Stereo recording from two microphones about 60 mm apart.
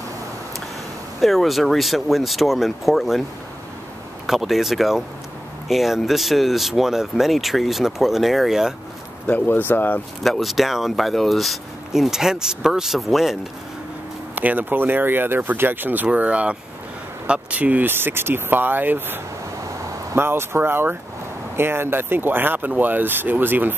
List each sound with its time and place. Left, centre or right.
1.2 s speech: centre
4.3 s speech: centre
9.3 s speech: left
10.2 s speech: centre
14.3 s speech: right
16.1 s speech: right
20.2 s speech: right